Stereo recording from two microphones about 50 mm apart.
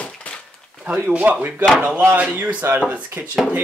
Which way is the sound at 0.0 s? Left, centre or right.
Left.